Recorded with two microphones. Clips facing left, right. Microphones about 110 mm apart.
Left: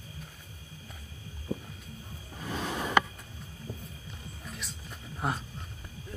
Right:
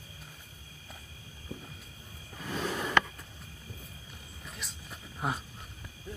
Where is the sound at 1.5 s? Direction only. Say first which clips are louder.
Left 8 dB; 45° left (ahead or behind).